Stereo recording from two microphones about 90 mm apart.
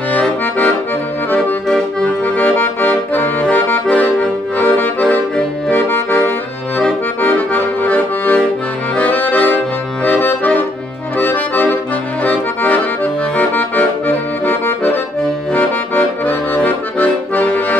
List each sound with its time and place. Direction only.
0.1 s accordion: 15° left (ahead or behind)
1.7 s accordion: 10° left (ahead or behind)